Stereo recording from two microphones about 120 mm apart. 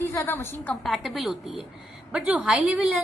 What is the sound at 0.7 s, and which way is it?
A woman's voice, centre (ahead or behind).